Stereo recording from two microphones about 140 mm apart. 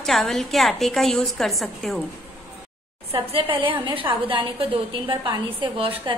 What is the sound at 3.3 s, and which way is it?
A woman's voice, 40° right (ahead or behind).